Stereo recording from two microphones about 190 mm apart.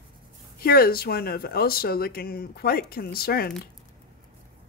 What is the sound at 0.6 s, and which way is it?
Speech, 50° left (ahead or behind).